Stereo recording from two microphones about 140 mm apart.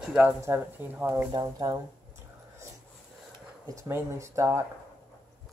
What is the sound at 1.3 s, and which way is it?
Speech, 30° right (ahead or behind).